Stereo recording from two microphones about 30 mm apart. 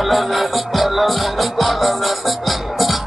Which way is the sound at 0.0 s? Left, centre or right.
Centre.